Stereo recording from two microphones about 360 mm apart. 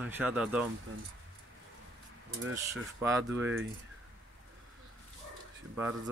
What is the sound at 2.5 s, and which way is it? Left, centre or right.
Speech, centre.